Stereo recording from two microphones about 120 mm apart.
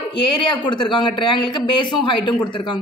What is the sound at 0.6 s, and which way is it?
Speech, 40° left (ahead or behind).